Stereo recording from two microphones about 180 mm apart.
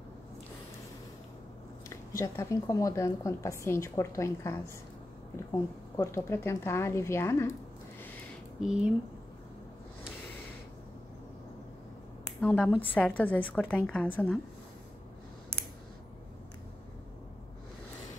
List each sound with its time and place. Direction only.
2.1 s a woman's voice: 15° left (ahead or behind)
5.9 s a woman's voice: 15° left (ahead or behind)
8.5 s speech: 5° right (ahead or behind)
12.4 s a woman's voice: 5° left (ahead or behind)